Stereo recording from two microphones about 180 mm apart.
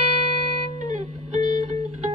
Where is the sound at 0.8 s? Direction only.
40° right (ahead or behind).